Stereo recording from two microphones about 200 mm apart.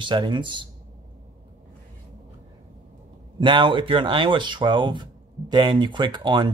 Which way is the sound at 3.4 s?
25° right (ahead or behind).